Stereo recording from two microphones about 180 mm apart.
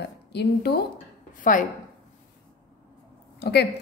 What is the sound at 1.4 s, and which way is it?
Speech, 50° left (ahead or behind).